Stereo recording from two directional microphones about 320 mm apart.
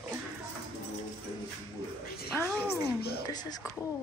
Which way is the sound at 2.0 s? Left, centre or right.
Left.